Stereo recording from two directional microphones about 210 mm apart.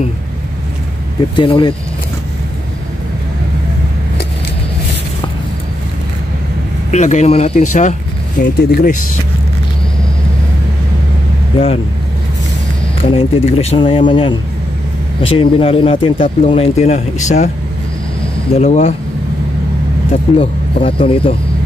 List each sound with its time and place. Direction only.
1.3 s speech: 25° left (ahead or behind)
6.9 s speech: 35° left (ahead or behind)
13.1 s speech: 25° left (ahead or behind)
18.5 s speech: 30° left (ahead or behind)
20.3 s speech: 25° left (ahead or behind)